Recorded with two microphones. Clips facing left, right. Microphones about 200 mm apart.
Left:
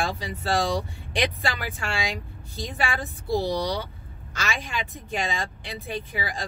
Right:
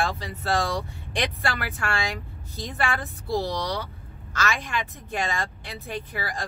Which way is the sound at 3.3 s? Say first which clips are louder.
Left 2 dB; 15° left (ahead or behind).